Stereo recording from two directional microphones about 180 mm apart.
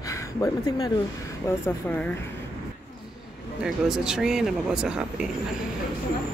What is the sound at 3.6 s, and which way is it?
Speech, 5° right (ahead or behind).